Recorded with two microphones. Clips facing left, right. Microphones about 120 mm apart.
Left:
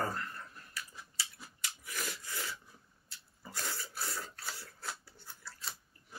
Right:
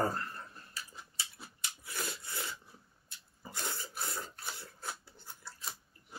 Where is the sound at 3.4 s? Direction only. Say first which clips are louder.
Right 1 dB; 25° right (ahead or behind).